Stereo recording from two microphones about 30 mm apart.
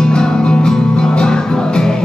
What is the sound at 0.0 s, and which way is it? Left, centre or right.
Music, left.